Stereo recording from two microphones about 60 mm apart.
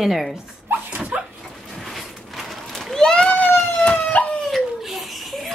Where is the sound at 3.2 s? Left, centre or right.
Left.